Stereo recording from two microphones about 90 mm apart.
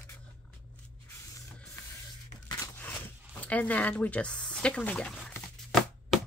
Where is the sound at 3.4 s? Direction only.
15° left (ahead or behind).